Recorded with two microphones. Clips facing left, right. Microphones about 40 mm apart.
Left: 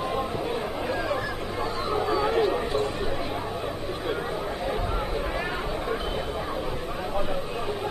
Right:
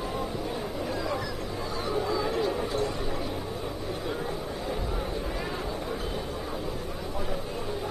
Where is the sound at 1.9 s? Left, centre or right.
Left.